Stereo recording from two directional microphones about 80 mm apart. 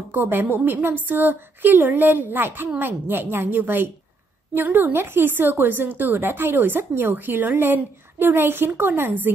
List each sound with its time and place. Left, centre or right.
0.1 s a woman's voice: right